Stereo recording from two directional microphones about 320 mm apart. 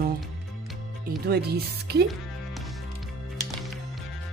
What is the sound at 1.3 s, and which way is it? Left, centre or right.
Speech, right.